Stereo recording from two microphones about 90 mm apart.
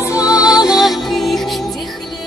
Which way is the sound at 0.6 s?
5° right (ahead or behind).